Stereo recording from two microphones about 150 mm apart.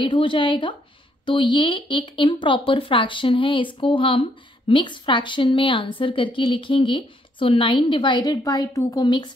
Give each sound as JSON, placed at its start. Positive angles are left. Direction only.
{"t": 0.0, "sound": "speech", "side_deg": 35}